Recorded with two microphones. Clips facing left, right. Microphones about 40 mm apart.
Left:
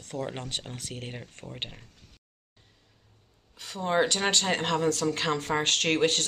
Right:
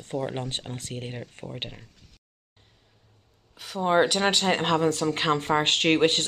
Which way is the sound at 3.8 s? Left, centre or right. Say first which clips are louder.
Right 4 dB; centre.